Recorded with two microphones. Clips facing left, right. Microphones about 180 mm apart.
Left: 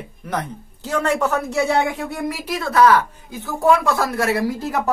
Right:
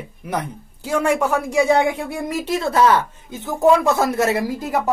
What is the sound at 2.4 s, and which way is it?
Speech, 25° right (ahead or behind).